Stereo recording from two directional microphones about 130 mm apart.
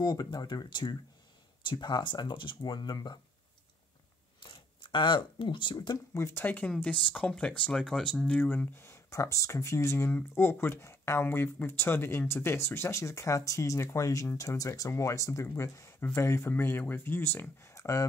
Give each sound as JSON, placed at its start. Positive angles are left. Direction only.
{"t": 0.0, "sound": "speech", "side_deg": 30}
{"t": 4.4, "sound": "speech", "side_deg": 35}
{"t": 6.1, "sound": "speech", "side_deg": 20}